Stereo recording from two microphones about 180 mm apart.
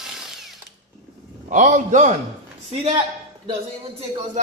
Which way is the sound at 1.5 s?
40° right (ahead or behind).